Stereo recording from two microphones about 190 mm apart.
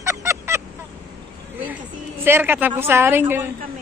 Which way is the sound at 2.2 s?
10° right (ahead or behind).